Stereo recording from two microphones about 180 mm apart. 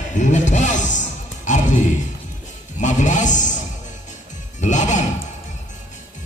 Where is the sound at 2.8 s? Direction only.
40° left (ahead or behind).